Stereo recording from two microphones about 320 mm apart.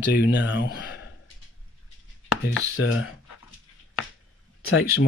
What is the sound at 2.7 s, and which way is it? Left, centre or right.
Speech, left.